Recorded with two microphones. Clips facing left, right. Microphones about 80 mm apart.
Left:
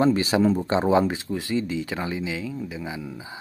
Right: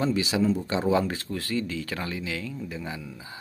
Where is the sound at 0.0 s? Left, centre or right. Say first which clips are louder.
Left 5 dB; left.